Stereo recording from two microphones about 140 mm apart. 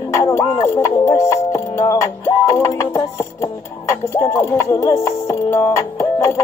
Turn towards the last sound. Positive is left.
turn(degrees=20)  # may be behind; listen again after turning